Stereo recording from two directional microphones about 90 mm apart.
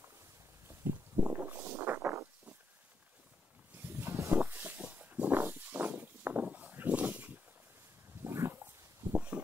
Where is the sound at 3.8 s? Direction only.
25° right (ahead or behind).